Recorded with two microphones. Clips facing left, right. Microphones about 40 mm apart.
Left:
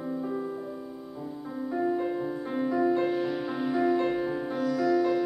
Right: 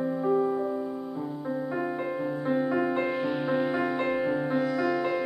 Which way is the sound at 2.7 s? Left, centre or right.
Right.